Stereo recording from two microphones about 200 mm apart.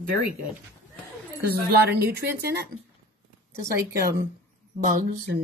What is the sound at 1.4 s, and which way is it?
A woman's voice, 50° right (ahead or behind).